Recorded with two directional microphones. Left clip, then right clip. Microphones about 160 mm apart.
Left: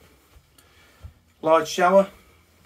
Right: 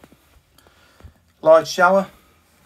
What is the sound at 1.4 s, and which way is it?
Speech, 5° right (ahead or behind).